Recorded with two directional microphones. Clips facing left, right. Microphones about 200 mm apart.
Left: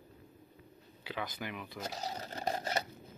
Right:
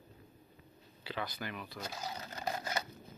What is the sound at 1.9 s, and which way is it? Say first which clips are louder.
Speech: left 3 dB; 35° left (ahead or behind).